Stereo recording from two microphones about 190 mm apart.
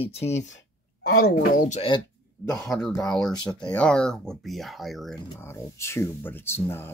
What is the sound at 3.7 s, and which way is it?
Speech, 5° left (ahead or behind).